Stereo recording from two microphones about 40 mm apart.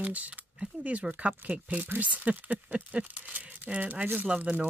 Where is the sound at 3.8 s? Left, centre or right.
Right.